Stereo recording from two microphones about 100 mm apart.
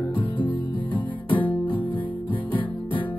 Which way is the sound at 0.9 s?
15° left (ahead or behind).